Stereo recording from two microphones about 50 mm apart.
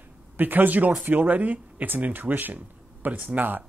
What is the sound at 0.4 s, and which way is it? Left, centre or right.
Speech, right.